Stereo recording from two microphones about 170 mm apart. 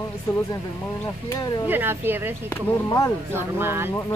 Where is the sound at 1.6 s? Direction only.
10° right (ahead or behind).